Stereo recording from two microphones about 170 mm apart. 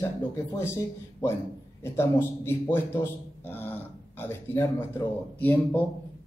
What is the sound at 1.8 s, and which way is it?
A man's voice, 15° left (ahead or behind).